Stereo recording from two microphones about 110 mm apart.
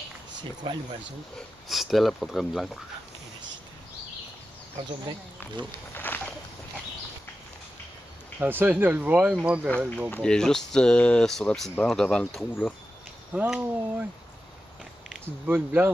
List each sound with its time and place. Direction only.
0.7 s speech: 45° right (ahead or behind)
1.7 s speech: centre (ahead or behind)
5.9 s a sound: 15° left (ahead or behind)
8.4 s speech: 15° right (ahead or behind)
10.1 s speech: 5° left (ahead or behind)
13.3 s speech: 10° right (ahead or behind)
15.4 s speech: 15° right (ahead or behind)